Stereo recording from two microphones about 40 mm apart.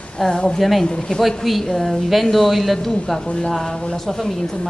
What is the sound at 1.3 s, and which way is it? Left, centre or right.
A woman's voice, centre.